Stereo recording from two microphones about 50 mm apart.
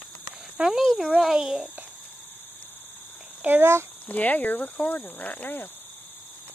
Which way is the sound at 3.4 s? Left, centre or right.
Right.